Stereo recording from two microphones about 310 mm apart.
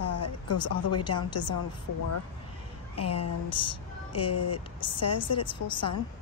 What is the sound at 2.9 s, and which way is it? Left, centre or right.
Speech, left.